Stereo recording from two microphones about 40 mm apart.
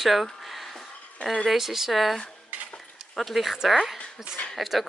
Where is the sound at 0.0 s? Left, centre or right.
Centre.